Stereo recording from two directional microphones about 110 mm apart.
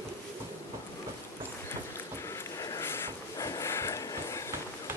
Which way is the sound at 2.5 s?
30° left (ahead or behind).